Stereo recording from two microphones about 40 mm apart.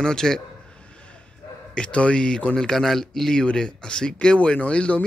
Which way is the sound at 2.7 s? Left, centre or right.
Centre.